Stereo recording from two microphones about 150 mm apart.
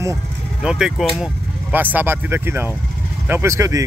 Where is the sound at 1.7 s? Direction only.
10° right (ahead or behind).